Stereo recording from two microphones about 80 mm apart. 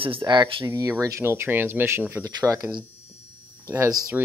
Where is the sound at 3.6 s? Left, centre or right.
Right.